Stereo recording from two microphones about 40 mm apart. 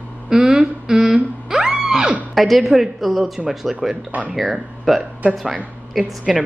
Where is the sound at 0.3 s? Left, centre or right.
Centre.